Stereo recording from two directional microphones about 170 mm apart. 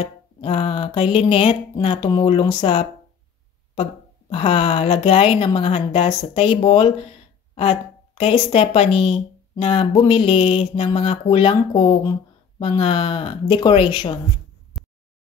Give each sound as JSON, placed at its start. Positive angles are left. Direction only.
{"t": 0.0, "sound": "a woman's voice", "side_deg": 35}
{"t": 4.3, "sound": "a woman's voice", "side_deg": 35}
{"t": 14.7, "sound": "a sound", "side_deg": 0}